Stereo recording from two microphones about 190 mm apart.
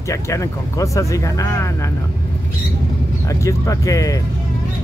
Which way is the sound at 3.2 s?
15° left (ahead or behind).